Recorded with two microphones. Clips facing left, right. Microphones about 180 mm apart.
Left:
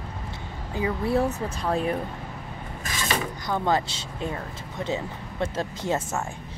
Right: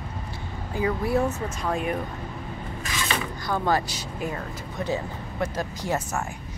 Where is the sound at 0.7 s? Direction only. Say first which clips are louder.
Even; 25° left (ahead or behind).